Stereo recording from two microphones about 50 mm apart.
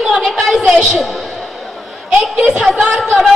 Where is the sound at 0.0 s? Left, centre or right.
Centre.